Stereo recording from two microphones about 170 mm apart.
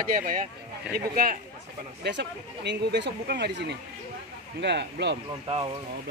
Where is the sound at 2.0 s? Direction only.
90° right.